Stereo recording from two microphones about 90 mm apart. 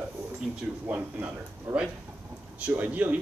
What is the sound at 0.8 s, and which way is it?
Speech, 20° right (ahead or behind).